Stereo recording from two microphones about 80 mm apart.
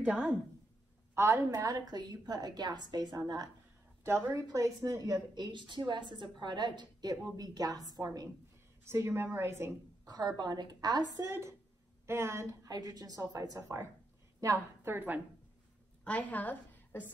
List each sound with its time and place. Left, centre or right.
0.0 s a woman's voice: centre
1.1 s a woman's voice: right
1.5 s a woman's voice: right
4.0 s a woman's voice: right
4.8 s a woman's voice: right
5.5 s a woman's voice: right
8.8 s a woman's voice: right
10.0 s a woman's voice: right
11.2 s a woman's voice: right
12.6 s a woman's voice: right
14.8 s a woman's voice: right
16.0 s a woman's voice: centre